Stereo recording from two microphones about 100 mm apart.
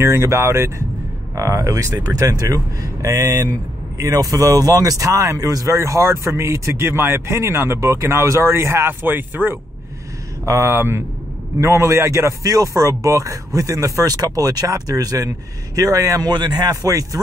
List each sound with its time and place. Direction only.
0.0 s speech: 25° right (ahead or behind)
10.4 s speech: 30° right (ahead or behind)